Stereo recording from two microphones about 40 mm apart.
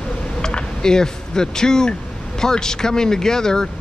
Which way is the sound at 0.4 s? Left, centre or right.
Left.